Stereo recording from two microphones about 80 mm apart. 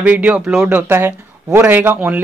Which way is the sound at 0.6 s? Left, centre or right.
Right.